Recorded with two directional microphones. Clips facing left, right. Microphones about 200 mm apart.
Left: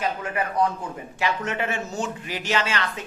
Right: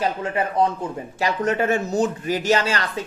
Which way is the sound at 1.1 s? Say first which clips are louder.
Right 5 dB; 40° right (ahead or behind).